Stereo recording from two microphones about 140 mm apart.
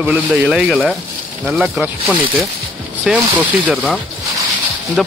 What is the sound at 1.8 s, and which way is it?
Speech, 10° right (ahead or behind).